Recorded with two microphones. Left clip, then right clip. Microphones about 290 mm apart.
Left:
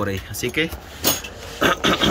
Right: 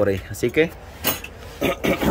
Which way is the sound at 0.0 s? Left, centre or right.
Centre.